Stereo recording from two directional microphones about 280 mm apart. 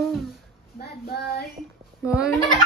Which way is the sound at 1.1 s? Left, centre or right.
Left.